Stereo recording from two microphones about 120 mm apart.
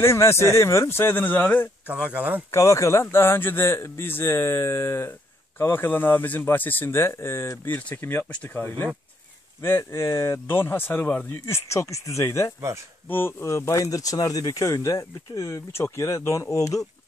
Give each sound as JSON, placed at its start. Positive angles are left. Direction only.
{"t": 0.0, "sound": "speech", "side_deg": 25}
{"t": 1.9, "sound": "speech", "side_deg": -10}
{"t": 2.5, "sound": "speech", "side_deg": 25}